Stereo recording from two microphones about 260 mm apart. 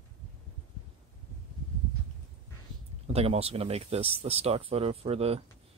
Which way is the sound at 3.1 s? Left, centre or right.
Right.